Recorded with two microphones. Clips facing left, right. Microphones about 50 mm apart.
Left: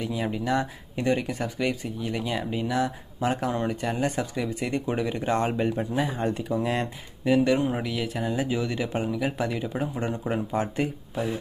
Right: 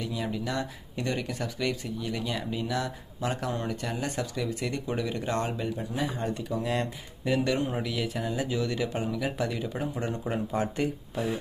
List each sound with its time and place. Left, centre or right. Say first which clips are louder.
0.0 s speech: left 4 dB; left
5.6 s speech: left 6 dB; left
6.3 s speech: left 3 dB; left
7.2 s speech: left 5 dB; centre